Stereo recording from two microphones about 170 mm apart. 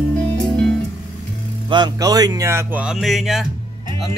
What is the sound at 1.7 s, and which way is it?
Speech, 25° right (ahead or behind).